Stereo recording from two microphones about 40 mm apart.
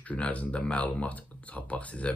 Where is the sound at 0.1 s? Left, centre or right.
Left.